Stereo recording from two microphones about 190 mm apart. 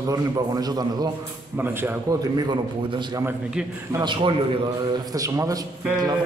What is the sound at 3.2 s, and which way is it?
Speech, 5° right (ahead or behind).